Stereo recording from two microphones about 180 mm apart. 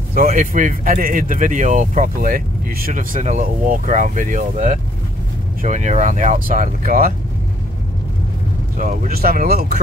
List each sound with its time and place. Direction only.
0.3 s speech: 45° right (ahead or behind)
8.7 s speech: 50° right (ahead or behind)